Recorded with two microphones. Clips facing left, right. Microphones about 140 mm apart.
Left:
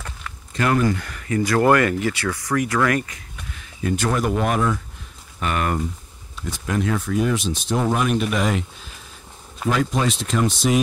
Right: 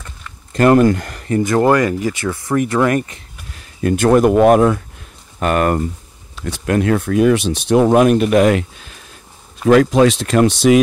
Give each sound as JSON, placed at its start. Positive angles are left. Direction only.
{"t": 0.5, "sound": "speech", "side_deg": -50}
{"t": 1.5, "sound": "speech", "side_deg": -20}
{"t": 3.8, "sound": "speech", "side_deg": -55}
{"t": 6.3, "sound": "speech", "side_deg": -70}
{"t": 9.7, "sound": "speech", "side_deg": -75}